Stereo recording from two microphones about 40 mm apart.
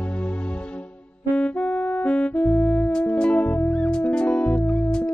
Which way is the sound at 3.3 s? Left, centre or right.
Left.